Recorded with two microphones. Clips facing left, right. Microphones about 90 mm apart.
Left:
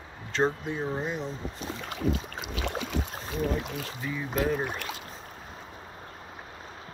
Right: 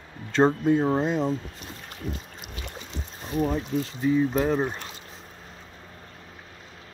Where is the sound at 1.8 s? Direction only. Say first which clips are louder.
Left 6 dB; 90° left.